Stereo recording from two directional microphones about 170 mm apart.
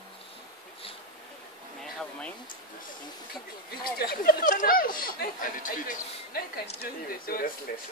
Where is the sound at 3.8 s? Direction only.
65° left (ahead or behind).